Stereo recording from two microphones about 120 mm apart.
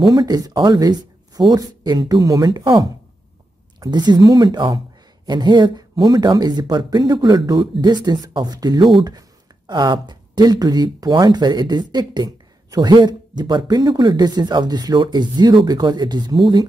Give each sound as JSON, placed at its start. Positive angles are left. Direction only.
{"t": 0.0, "sound": "speech", "side_deg": -35}